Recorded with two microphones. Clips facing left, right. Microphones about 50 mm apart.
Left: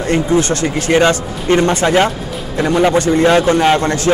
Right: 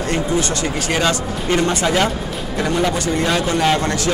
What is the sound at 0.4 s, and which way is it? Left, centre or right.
Speech, left.